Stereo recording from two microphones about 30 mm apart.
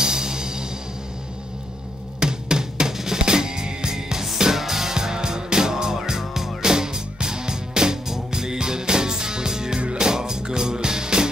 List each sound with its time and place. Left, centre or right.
0.0 s music: right
2.1 s drum: right
4.6 s music: centre
6.6 s music: right